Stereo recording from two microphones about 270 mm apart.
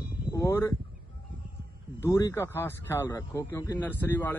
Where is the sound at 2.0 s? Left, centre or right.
Centre.